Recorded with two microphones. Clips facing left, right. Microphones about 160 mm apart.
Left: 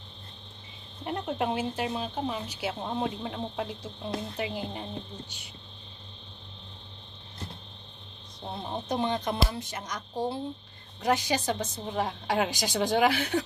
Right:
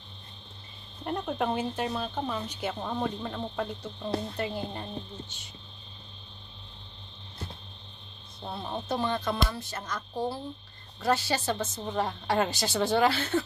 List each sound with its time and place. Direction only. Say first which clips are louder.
1.0 s a woman's voice: even; 5° left (ahead or behind)
8.5 s a woman's voice: even; 20° left (ahead or behind)